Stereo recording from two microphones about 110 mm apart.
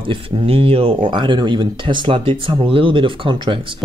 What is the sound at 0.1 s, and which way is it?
Speech, 55° right (ahead or behind).